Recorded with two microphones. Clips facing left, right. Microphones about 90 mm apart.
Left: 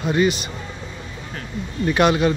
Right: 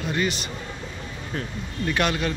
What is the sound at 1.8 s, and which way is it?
Speech, 20° left (ahead or behind).